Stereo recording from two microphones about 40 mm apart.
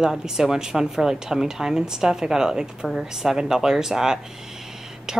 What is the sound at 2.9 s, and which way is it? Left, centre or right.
A woman's voice, centre.